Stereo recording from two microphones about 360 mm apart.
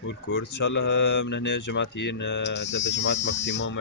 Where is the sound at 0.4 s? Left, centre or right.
Left.